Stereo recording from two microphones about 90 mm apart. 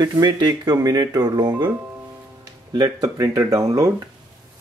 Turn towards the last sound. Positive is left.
turn(degrees=-40)  # may be behind; listen again after turning